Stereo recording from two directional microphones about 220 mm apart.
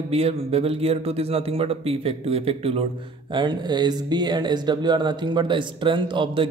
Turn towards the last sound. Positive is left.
turn(degrees=-20)  # may be behind; listen again after turning